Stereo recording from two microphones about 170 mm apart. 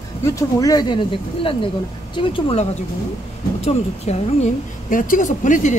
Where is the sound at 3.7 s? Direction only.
40° left (ahead or behind).